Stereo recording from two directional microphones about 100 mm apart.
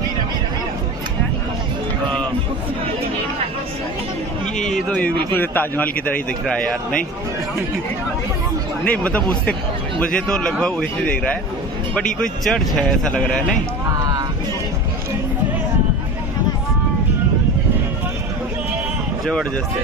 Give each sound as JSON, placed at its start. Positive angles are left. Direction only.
{"t": 4.6, "sound": "a sound", "side_deg": 5}
{"t": 5.3, "sound": "speech", "side_deg": 20}
{"t": 8.8, "sound": "speech", "side_deg": 15}